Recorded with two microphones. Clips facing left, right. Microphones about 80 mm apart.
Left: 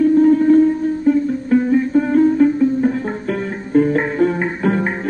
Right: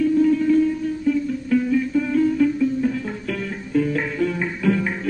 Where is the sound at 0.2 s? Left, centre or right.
Left.